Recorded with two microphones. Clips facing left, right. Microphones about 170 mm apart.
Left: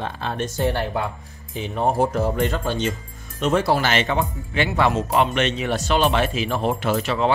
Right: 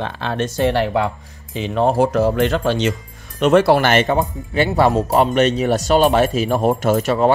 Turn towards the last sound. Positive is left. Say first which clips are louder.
# right 5 dB
turn(degrees=-45)  # may be behind; listen again after turning